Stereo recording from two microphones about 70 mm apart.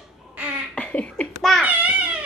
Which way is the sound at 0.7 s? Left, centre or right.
Centre.